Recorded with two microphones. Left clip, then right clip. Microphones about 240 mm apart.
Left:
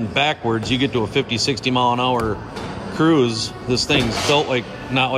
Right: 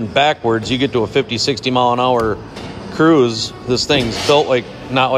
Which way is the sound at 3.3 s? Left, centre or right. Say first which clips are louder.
Right 3 dB; left.